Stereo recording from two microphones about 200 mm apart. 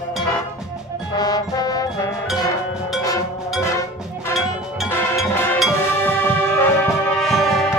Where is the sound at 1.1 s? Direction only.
20° left (ahead or behind).